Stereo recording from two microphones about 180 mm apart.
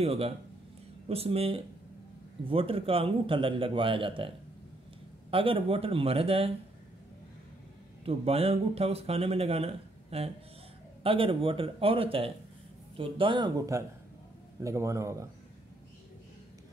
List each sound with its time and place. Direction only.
0.0 s a man's voice: 35° right (ahead or behind)
5.3 s speech: 30° right (ahead or behind)
8.0 s a man's voice: 35° right (ahead or behind); by 15.2 s 15° right (ahead or behind)